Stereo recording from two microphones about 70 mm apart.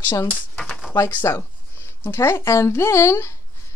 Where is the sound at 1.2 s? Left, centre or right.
Left.